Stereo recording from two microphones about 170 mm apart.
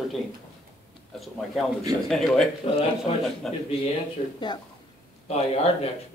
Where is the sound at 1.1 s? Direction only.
Centre (ahead or behind).